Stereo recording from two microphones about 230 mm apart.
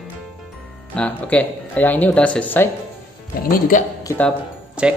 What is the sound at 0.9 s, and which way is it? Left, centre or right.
Speech, centre.